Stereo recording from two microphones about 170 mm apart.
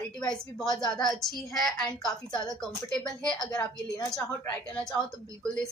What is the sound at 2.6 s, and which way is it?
Speech, 5° left (ahead or behind).